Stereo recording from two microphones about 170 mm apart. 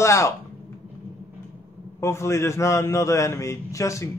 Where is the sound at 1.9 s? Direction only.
15° left (ahead or behind).